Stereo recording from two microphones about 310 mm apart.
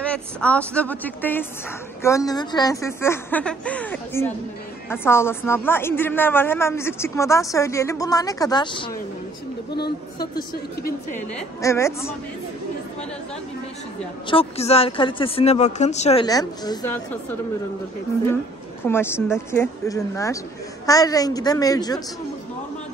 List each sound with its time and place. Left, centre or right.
0.0 s a woman's voice: centre
10.3 s a woman's voice: left
11.3 s a woman's voice: centre
14.2 s a woman's voice: centre
18.9 s a woman's voice: centre